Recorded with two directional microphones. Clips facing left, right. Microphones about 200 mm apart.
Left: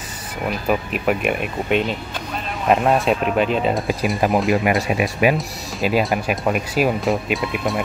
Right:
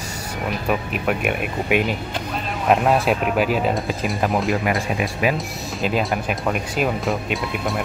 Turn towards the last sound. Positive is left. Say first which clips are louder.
# left 2 dB
turn(degrees=0)  # may be behind; listen again after turning